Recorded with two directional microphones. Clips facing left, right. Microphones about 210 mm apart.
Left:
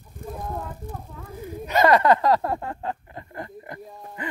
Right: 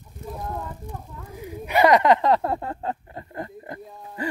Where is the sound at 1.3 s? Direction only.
15° right (ahead or behind).